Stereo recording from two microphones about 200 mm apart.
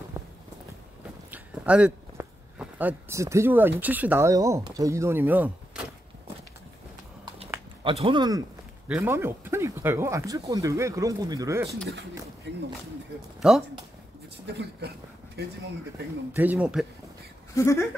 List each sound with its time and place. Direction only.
0.2 s walk: 10° right (ahead or behind)
1.3 s speech: 5° right (ahead or behind)
5.7 s walk: 5° right (ahead or behind)
7.8 s speech: 25° right (ahead or behind)
12.5 s speech: 60° right (ahead or behind)
13.4 s speech: 5° right (ahead or behind)
14.5 s speech: 55° right (ahead or behind)
16.3 s speech: 10° right (ahead or behind)
17.6 s speech: 15° left (ahead or behind)